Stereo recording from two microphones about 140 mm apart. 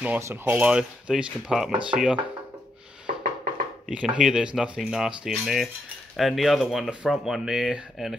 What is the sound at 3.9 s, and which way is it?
Speech, 5° right (ahead or behind).